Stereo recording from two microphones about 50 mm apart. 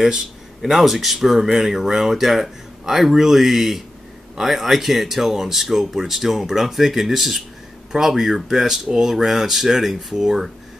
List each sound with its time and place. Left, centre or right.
0.0 s speech: centre